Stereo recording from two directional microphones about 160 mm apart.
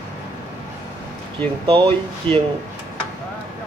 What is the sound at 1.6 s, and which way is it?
Speech, 30° right (ahead or behind).